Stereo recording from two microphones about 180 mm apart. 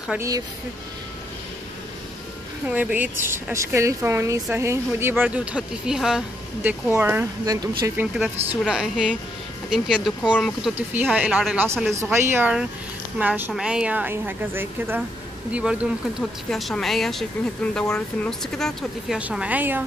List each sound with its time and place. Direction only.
2.6 s speech: 10° right (ahead or behind)
8.5 s speech: 5° right (ahead or behind)
10.9 s speech: 10° right (ahead or behind)